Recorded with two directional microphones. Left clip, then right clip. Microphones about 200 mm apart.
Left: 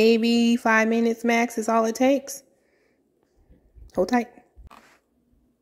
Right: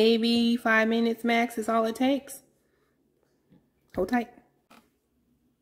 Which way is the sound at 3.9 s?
20° left (ahead or behind).